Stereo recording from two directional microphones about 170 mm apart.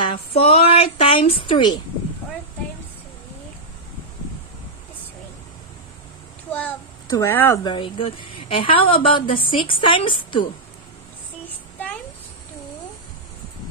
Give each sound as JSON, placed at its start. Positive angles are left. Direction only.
{"t": 0.1, "sound": "a woman's voice", "side_deg": 35}
{"t": 7.1, "sound": "speech", "side_deg": 15}
{"t": 7.6, "sound": "a woman's voice", "side_deg": 30}